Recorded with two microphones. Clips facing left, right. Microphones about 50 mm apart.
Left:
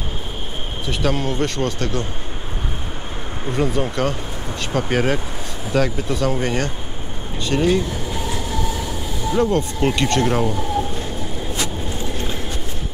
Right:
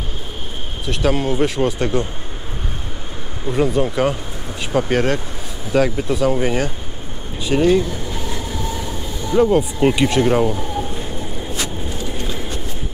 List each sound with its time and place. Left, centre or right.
0.8 s speech: centre
3.4 s speech: centre
7.4 s train: centre